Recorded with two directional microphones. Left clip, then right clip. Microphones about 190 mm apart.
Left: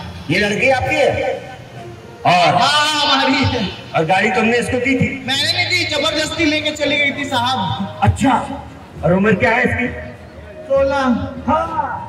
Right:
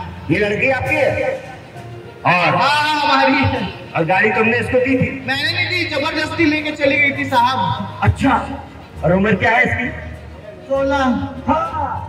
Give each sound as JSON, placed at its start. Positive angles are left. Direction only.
{"t": 0.3, "sound": "a man's voice", "side_deg": 25}
{"t": 9.0, "sound": "a man's voice", "side_deg": 60}